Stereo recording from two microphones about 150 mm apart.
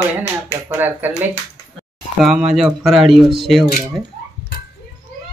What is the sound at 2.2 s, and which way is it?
Speech, 5° right (ahead or behind).